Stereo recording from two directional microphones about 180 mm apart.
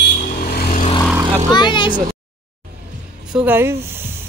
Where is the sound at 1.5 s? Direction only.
25° left (ahead or behind).